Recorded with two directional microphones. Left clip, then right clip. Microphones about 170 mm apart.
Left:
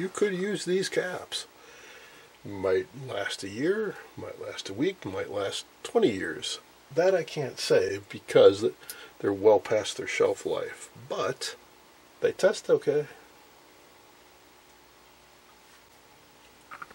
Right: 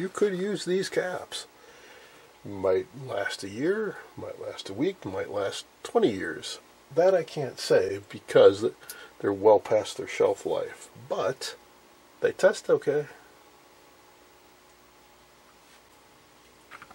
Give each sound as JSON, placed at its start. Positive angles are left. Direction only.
{"t": 0.1, "sound": "speech", "side_deg": 15}
{"t": 2.5, "sound": "speech", "side_deg": 5}
{"t": 4.7, "sound": "speech", "side_deg": 5}
{"t": 10.5, "sound": "speech", "side_deg": 20}
{"t": 12.2, "sound": "speech", "side_deg": 5}